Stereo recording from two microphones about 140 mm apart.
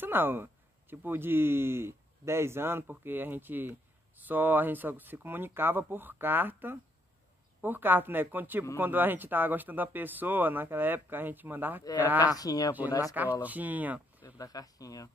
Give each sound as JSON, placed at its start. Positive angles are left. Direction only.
{"t": 0.0, "sound": "speech", "side_deg": -15}
{"t": 12.4, "sound": "speech", "side_deg": 25}
{"t": 12.7, "sound": "speech", "side_deg": -10}
{"t": 14.2, "sound": "speech", "side_deg": 25}